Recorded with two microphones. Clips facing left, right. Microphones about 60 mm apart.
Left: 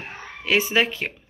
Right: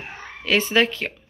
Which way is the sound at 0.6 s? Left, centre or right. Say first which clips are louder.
Right 2 dB; centre.